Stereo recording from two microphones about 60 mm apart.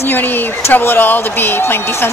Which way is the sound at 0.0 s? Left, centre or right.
Left.